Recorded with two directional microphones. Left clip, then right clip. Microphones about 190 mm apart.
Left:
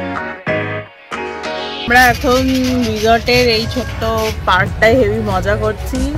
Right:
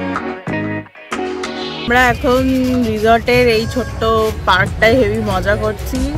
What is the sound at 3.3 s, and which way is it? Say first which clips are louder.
Speech: even; 35° right (ahead or behind).